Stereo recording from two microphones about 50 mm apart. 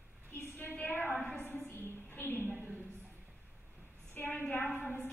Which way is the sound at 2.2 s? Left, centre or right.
Left.